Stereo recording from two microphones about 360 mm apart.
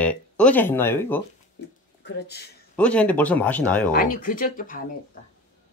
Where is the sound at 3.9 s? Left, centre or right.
Left.